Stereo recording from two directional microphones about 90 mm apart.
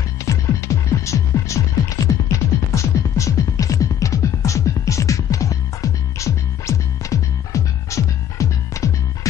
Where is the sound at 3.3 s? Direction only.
40° left (ahead or behind).